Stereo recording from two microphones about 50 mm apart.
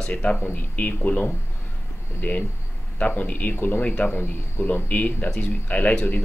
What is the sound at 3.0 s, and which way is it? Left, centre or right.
Speech, left.